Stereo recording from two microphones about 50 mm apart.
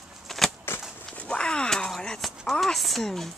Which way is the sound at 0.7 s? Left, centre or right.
Left.